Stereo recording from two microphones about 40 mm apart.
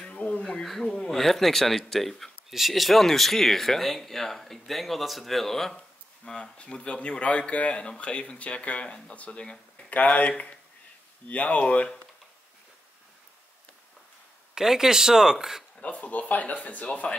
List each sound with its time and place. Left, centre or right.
0.3 s a sound: centre
0.7 s speech: centre
5.8 s a sound: centre
6.7 s speech: left
9.9 s speech: left
14.5 s speech: centre
15.8 s speech: left